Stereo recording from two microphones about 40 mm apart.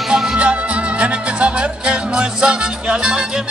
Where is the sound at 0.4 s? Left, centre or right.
Right.